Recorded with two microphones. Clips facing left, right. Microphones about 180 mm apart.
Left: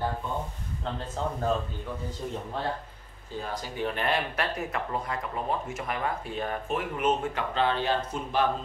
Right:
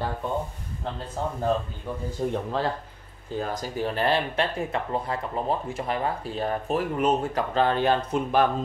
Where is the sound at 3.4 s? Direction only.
40° right (ahead or behind).